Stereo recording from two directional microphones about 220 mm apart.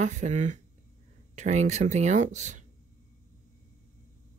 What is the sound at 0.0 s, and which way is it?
Speech, 35° right (ahead or behind).